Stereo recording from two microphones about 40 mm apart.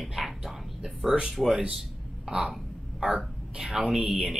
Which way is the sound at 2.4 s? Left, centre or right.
Centre.